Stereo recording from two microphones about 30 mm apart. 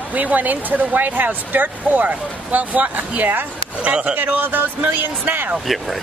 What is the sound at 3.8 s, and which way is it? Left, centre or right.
Speech, right.